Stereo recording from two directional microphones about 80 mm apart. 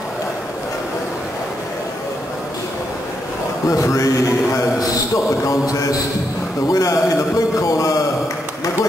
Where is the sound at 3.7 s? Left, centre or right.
Left.